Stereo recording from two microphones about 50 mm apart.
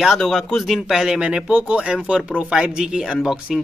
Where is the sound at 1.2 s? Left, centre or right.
Right.